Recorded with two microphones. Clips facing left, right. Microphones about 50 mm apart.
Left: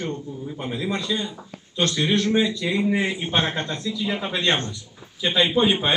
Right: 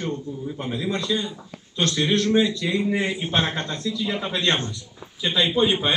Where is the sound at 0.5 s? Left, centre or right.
Centre.